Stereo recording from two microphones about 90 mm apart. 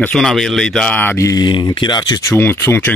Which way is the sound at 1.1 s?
35° left (ahead or behind).